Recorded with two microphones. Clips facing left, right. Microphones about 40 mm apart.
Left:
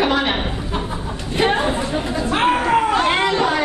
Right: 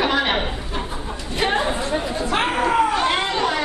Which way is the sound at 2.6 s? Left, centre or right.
Left.